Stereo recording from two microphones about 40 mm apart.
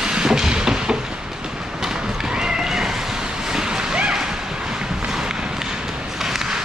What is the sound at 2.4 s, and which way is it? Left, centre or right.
Cat, centre.